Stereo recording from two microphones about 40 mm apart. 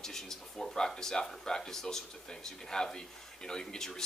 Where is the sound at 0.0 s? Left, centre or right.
Centre.